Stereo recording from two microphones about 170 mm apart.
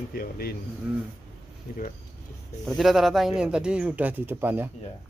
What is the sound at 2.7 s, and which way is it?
Speech, centre (ahead or behind).